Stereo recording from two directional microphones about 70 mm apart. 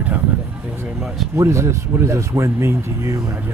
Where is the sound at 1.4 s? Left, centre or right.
Right.